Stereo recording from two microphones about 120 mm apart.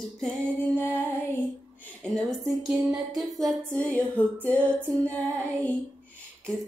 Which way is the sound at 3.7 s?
10° left (ahead or behind).